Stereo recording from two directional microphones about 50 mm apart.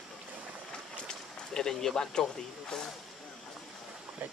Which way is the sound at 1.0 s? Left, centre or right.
Centre.